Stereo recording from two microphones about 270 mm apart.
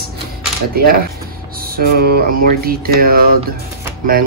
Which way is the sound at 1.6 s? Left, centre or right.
Right.